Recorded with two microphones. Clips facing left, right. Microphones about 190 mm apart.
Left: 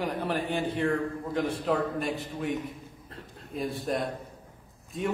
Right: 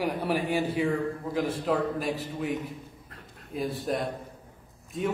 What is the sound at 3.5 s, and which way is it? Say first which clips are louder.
A man's voice: right 1 dB; centre (ahead or behind).